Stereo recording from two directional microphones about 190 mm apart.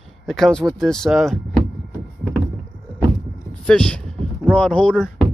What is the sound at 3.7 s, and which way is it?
Speech, 5° left (ahead or behind).